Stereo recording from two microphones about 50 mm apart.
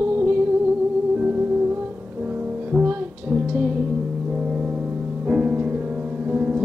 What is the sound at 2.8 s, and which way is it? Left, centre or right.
Music, right.